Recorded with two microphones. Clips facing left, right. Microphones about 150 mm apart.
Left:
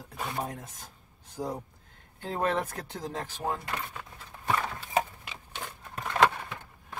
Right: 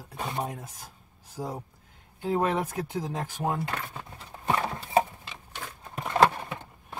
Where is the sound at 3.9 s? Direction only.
30° right (ahead or behind).